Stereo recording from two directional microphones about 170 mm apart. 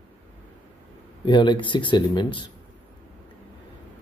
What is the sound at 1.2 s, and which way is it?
Speech, 30° left (ahead or behind).